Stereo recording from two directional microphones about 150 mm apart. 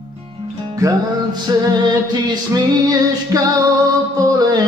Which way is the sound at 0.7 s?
20° right (ahead or behind).